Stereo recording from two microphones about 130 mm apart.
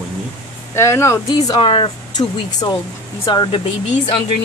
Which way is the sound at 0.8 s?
20° left (ahead or behind).